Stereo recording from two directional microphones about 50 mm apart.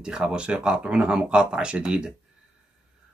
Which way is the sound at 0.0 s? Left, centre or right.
Centre.